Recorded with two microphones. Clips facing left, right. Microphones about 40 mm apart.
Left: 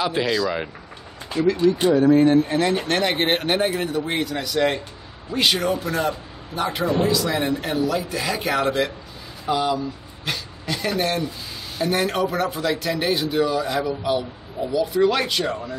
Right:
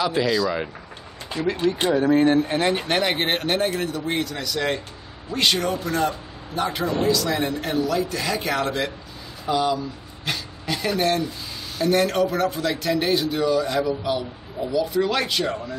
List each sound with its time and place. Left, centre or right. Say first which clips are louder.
0.0 s a man's voice: even; centre
1.6 s speech: left 3 dB; right
2.0 s speech: left 2 dB; right
2.8 s a man's voice: left 1 dB; centre